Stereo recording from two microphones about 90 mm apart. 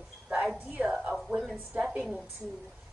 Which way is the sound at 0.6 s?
15° right (ahead or behind).